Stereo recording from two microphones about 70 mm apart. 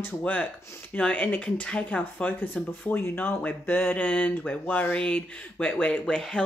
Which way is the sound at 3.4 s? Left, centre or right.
Left.